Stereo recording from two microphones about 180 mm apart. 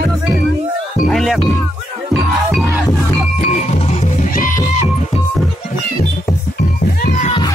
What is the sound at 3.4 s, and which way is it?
Music, 40° left (ahead or behind).